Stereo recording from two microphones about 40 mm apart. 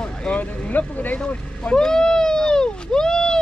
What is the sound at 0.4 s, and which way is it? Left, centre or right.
Speech, left.